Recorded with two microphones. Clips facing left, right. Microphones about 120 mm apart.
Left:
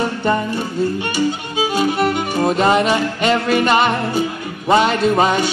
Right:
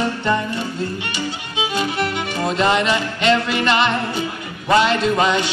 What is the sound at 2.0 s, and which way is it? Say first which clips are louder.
Music: left 5 dB; 45° left (ahead or behind).